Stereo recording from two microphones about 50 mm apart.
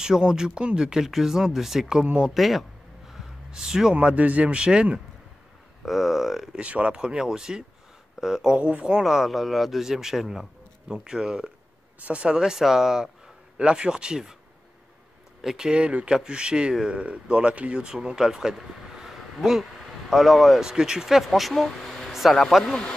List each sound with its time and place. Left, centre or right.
0.0 s speech: centre
3.1 s a sound: centre
3.9 s a man's voice: right
5.9 s speech: centre
6.5 s speech: right; by 8.5 s centre
8.5 s a man's voice: right
9.0 s speech: centre
15.5 s speech: centre
20.6 s speech: centre
22.1 s a sound: centre
22.7 s speech: centre